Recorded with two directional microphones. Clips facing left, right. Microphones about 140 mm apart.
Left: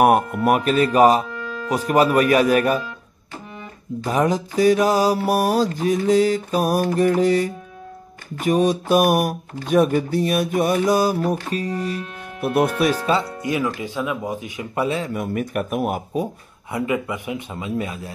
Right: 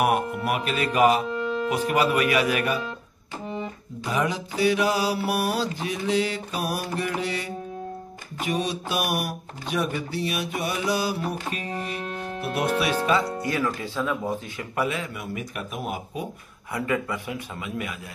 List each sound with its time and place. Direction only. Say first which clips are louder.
0.0 s speech: left 7 dB; 45° left (ahead or behind)
1.3 s music: right 4 dB; 25° right (ahead or behind)
1.9 s mantra: left 8 dB; 40° left (ahead or behind)
4.0 s mantra: left 6 dB; 40° left (ahead or behind)
8.4 s speech: left 9 dB; 45° left (ahead or behind)
13.0 s mantra: left 2 dB; 30° left (ahead or behind)
13.4 s speech: left 3 dB; 20° left (ahead or behind)
14.8 s mantra: left 5 dB; 30° left (ahead or behind)
15.1 s speech: left 9 dB; 50° left (ahead or behind)
16.7 s a man's voice: left 3 dB; 20° left (ahead or behind)